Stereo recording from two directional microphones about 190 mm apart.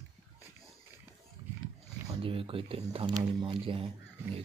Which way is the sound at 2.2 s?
30° right (ahead or behind).